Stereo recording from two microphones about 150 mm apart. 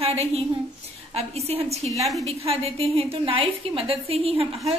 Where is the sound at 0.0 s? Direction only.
45° right (ahead or behind).